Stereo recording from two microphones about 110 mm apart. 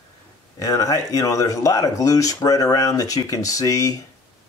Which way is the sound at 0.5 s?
30° left (ahead or behind).